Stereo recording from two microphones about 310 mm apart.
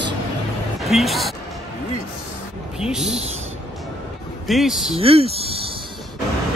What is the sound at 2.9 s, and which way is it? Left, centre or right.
Speech, centre.